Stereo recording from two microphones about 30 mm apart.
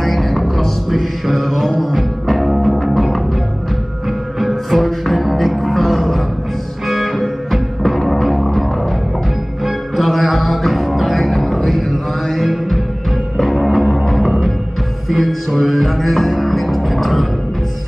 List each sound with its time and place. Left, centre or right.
0.0 s music: centre
4.4 s music: centre
9.9 s music: centre